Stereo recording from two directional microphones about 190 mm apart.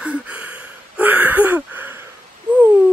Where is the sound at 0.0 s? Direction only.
5° right (ahead or behind).